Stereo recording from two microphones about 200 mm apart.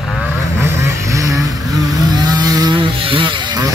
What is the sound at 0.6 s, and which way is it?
Vehicle, 15° right (ahead or behind).